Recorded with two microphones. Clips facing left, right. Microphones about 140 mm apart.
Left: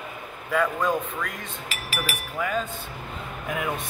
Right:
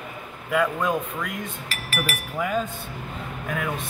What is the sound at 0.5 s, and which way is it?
Speech, 5° right (ahead or behind).